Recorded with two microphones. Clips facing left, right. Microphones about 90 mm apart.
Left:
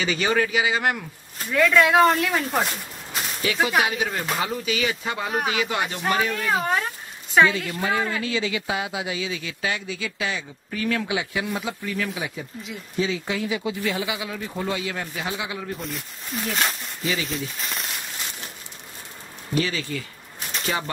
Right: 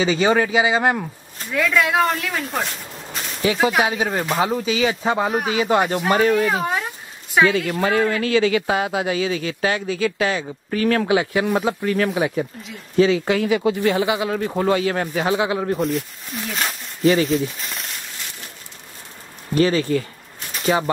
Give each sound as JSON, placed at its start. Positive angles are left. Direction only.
{"t": 0.0, "sound": "speech", "side_deg": -30}
{"t": 1.5, "sound": "speech", "side_deg": 0}
{"t": 3.8, "sound": "speech", "side_deg": -35}
{"t": 6.4, "sound": "speech", "side_deg": 0}
{"t": 7.4, "sound": "speech", "side_deg": -55}
{"t": 7.7, "sound": "speech", "side_deg": -65}
{"t": 12.9, "sound": "speech", "side_deg": -65}
{"t": 14.1, "sound": "speech", "side_deg": -50}
{"t": 15.9, "sound": "speech", "side_deg": 0}
{"t": 17.0, "sound": "speech", "side_deg": -45}
{"t": 17.6, "sound": "speech", "side_deg": 0}
{"t": 19.5, "sound": "speech", "side_deg": -45}
{"t": 20.6, "sound": "speech", "side_deg": -30}